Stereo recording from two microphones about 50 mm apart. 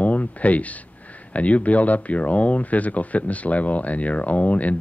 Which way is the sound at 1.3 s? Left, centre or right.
Left.